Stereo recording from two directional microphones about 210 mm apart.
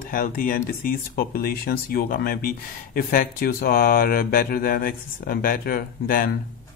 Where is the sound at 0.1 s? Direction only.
40° left (ahead or behind).